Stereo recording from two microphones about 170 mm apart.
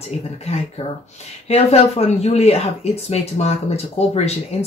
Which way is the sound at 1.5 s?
40° left (ahead or behind).